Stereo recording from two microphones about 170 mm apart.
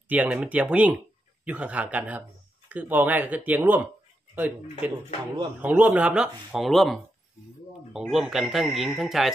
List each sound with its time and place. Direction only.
0.1 s speech: 10° right (ahead or behind)
4.9 s speech: 30° right (ahead or behind)
5.6 s speech: 10° right (ahead or behind)